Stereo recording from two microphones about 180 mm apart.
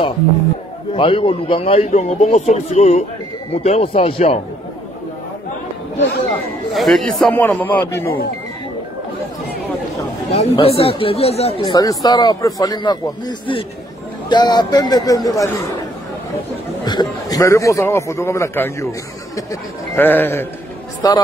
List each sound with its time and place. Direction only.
0.9 s a man's voice: 30° left (ahead or behind)
5.9 s speech: 65° left (ahead or behind)
6.7 s a man's voice: centre (ahead or behind)
10.3 s speech: 35° left (ahead or behind)
11.6 s a man's voice: 20° left (ahead or behind)
16.8 s a man's voice: 20° left (ahead or behind)